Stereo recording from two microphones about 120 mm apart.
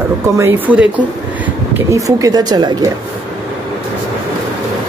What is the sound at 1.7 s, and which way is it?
A woman's voice, 25° right (ahead or behind).